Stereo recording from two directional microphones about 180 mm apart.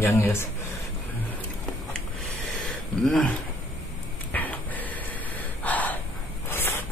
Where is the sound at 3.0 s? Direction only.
5° left (ahead or behind).